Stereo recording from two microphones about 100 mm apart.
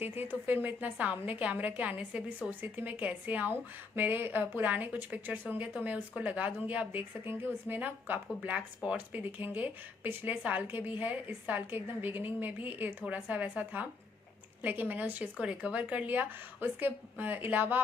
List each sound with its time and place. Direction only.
0.2 s speech: 20° right (ahead or behind)